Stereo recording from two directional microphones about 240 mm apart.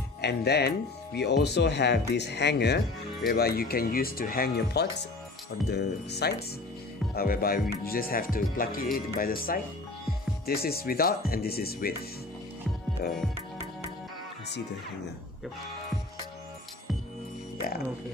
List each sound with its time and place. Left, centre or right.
0.2 s speech: left
17.6 s speech: left